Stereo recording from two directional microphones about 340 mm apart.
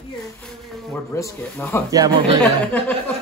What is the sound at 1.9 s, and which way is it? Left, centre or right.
Speech, centre.